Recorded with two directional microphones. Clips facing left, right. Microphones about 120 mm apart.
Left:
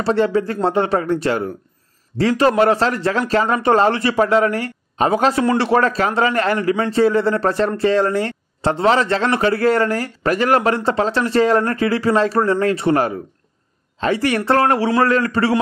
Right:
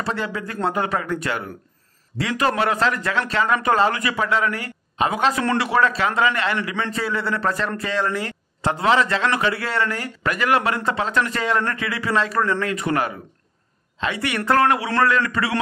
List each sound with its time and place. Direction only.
0.0 s a man's voice: 35° left (ahead or behind)